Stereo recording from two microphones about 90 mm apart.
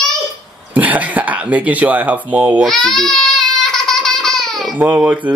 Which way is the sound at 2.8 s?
5° left (ahead or behind).